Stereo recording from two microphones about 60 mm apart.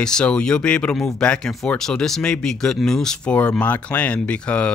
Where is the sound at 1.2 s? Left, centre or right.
Centre.